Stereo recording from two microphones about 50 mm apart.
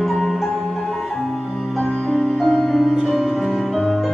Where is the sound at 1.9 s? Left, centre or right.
Centre.